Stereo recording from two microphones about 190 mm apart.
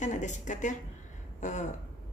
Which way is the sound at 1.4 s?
40° left (ahead or behind).